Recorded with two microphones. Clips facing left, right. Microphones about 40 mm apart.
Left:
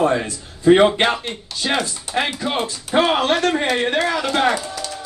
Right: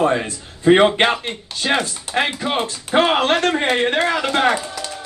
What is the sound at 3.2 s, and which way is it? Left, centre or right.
Speech, right.